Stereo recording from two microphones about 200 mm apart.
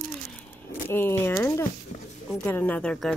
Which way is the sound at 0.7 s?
10° left (ahead or behind).